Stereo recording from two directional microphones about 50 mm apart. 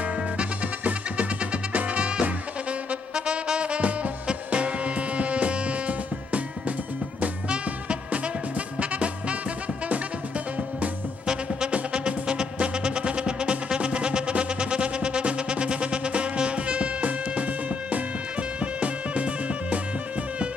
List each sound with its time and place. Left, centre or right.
0.4 s music: right
11.7 s music: centre
18.6 s music: right